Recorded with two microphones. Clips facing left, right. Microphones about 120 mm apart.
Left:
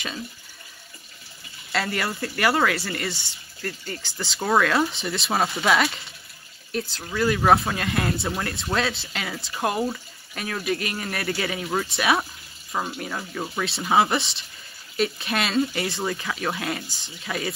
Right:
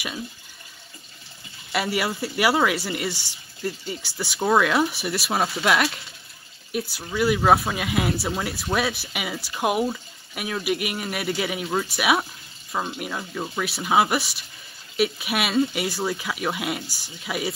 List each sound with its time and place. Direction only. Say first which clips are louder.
1.7 s speech: right 2 dB; 15° right (ahead or behind)
16.8 s speech: right 1 dB; 20° left (ahead or behind)
17.2 s speech: right 1 dB; 10° right (ahead or behind)